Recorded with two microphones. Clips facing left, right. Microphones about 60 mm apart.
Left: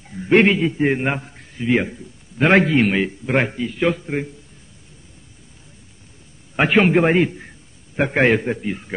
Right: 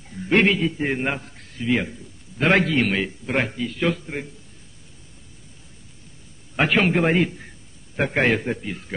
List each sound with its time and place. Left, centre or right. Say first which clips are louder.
0.1 s a man's voice: left 4 dB; centre
6.5 s a man's voice: left 4 dB; centre